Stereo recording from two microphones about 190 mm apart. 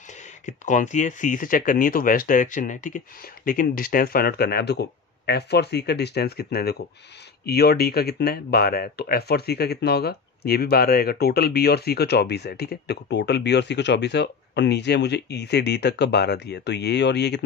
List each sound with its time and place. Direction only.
0.5 s speech: 40° left (ahead or behind); by 17.5 s 65° left (ahead or behind)